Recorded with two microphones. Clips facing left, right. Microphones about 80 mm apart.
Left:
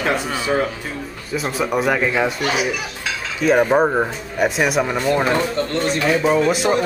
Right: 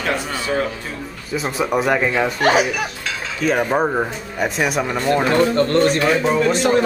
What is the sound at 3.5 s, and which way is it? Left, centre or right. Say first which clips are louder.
Speech: left 3 dB; centre.